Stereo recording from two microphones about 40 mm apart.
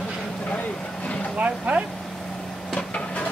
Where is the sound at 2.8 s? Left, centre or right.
Left.